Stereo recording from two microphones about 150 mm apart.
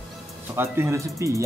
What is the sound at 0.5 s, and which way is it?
Speech, 15° right (ahead or behind).